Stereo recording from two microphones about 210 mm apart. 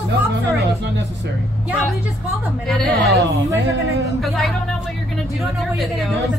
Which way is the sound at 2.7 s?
Centre (ahead or behind).